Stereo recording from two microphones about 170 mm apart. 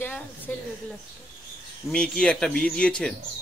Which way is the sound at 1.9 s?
5° left (ahead or behind).